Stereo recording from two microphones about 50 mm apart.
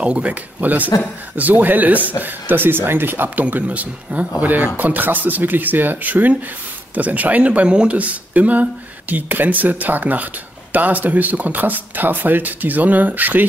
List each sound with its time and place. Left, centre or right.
0.0 s speech: right
8.0 s speech: right